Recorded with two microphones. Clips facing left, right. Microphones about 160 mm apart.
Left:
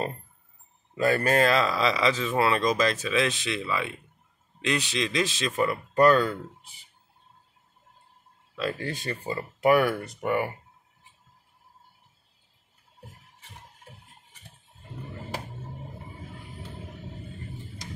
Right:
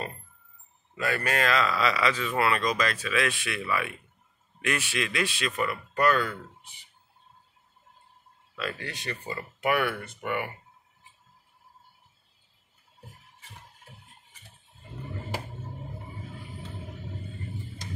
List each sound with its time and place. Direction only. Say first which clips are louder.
0.9 s speech: left 6 dB; 35° left (ahead or behind)
8.7 s speech: left 6 dB; 40° left (ahead or behind)
9.0 s speech: left 4 dB; 25° left (ahead or behind)